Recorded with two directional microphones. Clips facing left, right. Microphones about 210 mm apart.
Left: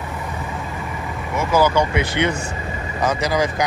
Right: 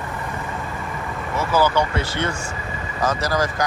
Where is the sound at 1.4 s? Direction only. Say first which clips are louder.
Left 2 dB; 15° left (ahead or behind).